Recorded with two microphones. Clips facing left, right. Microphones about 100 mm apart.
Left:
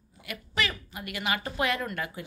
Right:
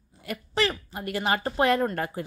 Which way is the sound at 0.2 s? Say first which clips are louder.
Right 5 dB; 35° right (ahead or behind).